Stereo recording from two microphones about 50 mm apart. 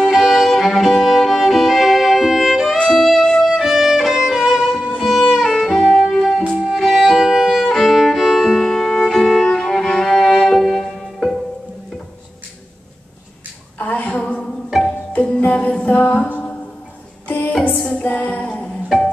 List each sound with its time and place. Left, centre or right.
0.0 s music: centre
3.5 s violin: centre
5.4 s music: centre
6.5 s violin: centre
8.5 s music: centre
13.7 s a sound: left
14.1 s music: left
17.6 s music: left